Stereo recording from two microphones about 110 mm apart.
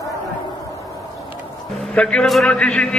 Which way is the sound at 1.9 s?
10° left (ahead or behind).